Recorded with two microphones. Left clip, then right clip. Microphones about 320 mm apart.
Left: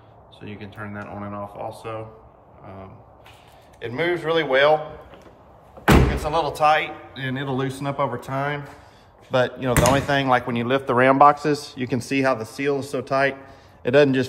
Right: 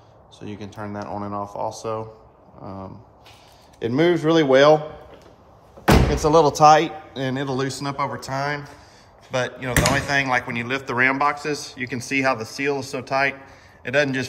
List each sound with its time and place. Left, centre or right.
0.4 s speech: centre
3.9 s a man's voice: right
6.1 s a man's voice: right
7.2 s speech: centre